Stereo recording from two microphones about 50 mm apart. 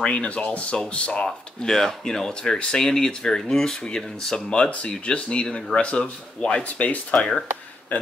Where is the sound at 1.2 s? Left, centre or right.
Centre; by 7.1 s left.